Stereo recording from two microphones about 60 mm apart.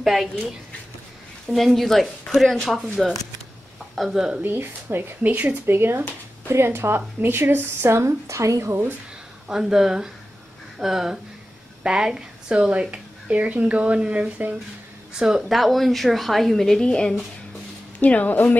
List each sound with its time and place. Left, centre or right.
0.0 s speech: centre
1.5 s speech: centre
4.4 s speech: right
5.2 s speech: right
8.0 s a woman's voice: right
9.5 s a woman's voice: centre
18.0 s a woman's voice: left